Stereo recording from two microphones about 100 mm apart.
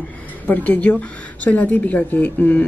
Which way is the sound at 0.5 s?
15° left (ahead or behind).